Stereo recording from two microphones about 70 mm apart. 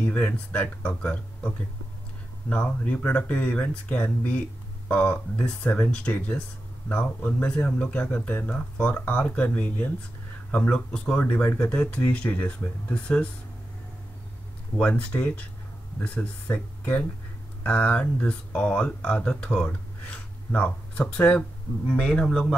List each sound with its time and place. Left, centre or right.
0.0 s speech: left
2.5 s speech: centre
14.8 s speech: left